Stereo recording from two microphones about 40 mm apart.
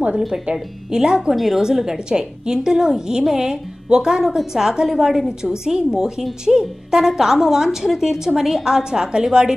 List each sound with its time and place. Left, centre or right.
0.9 s speech: centre
1.3 s a woman's voice: centre
1.6 s a woman's voice: centre